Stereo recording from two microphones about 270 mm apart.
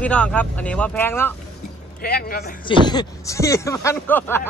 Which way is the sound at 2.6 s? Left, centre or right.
Centre.